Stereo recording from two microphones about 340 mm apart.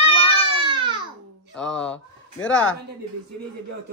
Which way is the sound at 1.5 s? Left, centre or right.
Centre.